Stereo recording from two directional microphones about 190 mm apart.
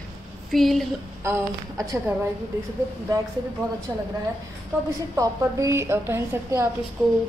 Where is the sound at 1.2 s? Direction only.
15° right (ahead or behind).